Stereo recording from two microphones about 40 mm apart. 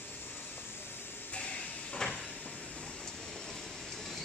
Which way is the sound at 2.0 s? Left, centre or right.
Centre.